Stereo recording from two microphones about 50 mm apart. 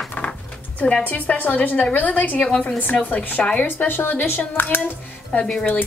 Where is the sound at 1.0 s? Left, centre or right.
Left.